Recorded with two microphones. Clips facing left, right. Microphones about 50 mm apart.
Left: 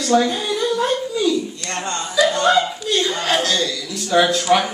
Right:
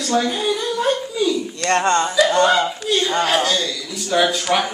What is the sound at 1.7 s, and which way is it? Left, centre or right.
Speech, right.